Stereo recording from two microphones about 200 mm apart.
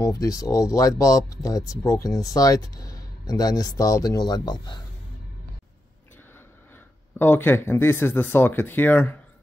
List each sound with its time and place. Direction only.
0.0 s speech: 15° left (ahead or behind)
7.2 s speech: 10° left (ahead or behind)